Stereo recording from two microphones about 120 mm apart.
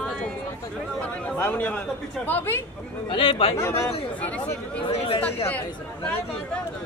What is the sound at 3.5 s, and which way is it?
Speech, 20° left (ahead or behind).